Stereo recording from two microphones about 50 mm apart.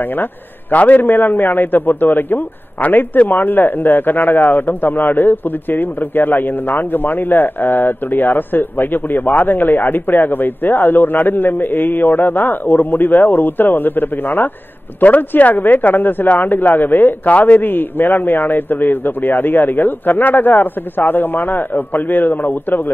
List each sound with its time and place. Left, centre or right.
0.1 s a man's voice: left